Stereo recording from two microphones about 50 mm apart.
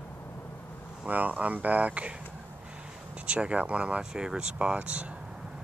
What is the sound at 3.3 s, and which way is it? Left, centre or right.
Speech, right.